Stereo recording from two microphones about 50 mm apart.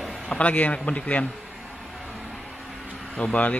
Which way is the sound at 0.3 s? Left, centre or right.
Left.